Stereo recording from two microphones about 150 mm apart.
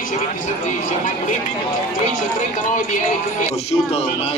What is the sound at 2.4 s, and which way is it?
Speech, 55° left (ahead or behind).